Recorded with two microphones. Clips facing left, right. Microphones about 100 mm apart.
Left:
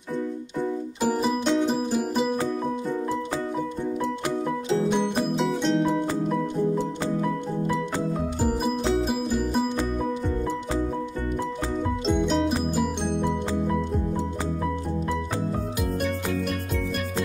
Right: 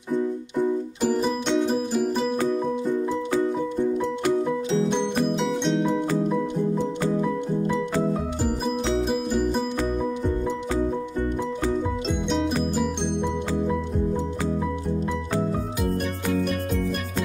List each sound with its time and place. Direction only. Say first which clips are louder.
1.2 s music: even; centre (ahead or behind)
5.4 s music: even; centre (ahead or behind)
9.0 s music: right 2 dB; centre (ahead or behind)
12.1 s music: left 4 dB; centre (ahead or behind)